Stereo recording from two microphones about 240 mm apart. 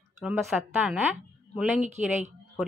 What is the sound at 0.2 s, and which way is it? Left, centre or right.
Speech, centre.